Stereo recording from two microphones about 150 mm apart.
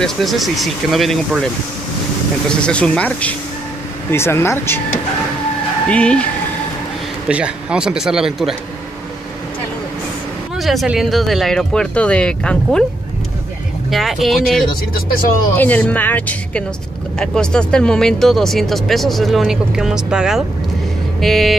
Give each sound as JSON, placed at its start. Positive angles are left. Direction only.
{"t": 0.0, "sound": "speech", "side_deg": 0}
{"t": 2.6, "sound": "speech", "side_deg": 5}
{"t": 5.9, "sound": "speech", "side_deg": 10}
{"t": 7.2, "sound": "speech", "side_deg": -10}
{"t": 10.6, "sound": "speech", "side_deg": 0}
{"t": 13.8, "sound": "speech", "side_deg": 0}
{"t": 15.0, "sound": "speech", "side_deg": 75}
{"t": 15.5, "sound": "speech", "side_deg": 10}